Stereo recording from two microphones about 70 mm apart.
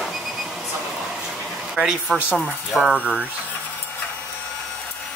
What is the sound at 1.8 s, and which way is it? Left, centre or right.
Speech, centre.